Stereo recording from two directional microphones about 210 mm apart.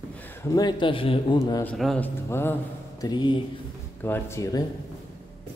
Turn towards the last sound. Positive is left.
turn(degrees=15)  # may be behind; listen again after turning